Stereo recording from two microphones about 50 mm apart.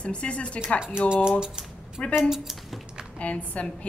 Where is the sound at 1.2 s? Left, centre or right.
Centre.